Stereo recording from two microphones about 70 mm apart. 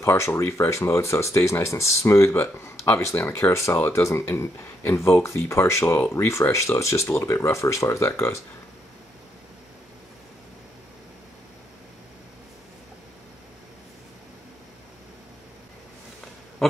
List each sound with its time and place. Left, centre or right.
0.0 s speech: left